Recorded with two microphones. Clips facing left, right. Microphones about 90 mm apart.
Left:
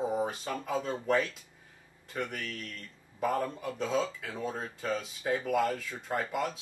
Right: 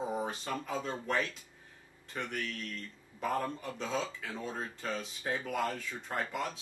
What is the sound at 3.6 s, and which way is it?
Speech, 5° left (ahead or behind).